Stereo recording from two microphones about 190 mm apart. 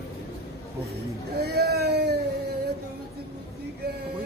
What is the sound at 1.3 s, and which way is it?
Speech, 60° right (ahead or behind).